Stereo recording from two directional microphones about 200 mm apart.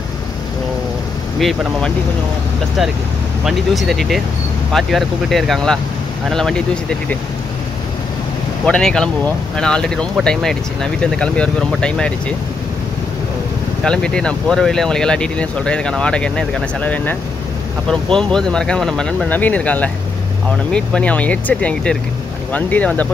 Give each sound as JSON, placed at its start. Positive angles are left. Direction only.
{"t": 1.4, "sound": "speech", "side_deg": 0}
{"t": 3.4, "sound": "speech", "side_deg": 0}
{"t": 8.6, "sound": "speech", "side_deg": 5}
{"t": 13.8, "sound": "speech", "side_deg": 5}